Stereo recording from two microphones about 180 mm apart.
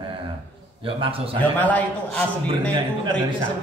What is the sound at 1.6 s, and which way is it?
A man's voice, 10° left (ahead or behind).